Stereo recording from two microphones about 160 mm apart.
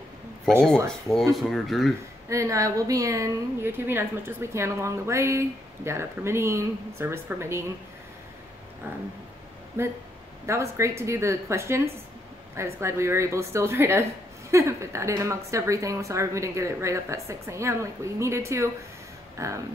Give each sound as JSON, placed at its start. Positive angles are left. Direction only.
{"t": 1.3, "sound": "speech", "side_deg": 0}
{"t": 2.2, "sound": "a woman's voice", "side_deg": -20}
{"t": 10.4, "sound": "a woman's voice", "side_deg": -15}